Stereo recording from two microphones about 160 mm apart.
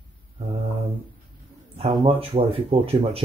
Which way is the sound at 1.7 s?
35° right (ahead or behind).